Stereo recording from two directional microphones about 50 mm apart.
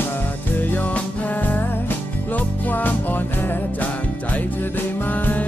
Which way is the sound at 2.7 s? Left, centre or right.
Left.